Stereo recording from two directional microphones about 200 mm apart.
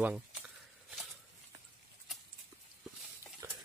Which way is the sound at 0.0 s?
5° right (ahead or behind).